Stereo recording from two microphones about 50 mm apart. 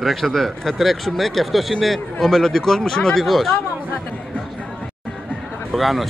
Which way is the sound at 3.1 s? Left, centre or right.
Centre.